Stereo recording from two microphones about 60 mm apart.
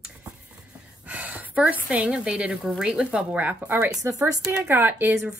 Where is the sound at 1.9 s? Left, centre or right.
Centre.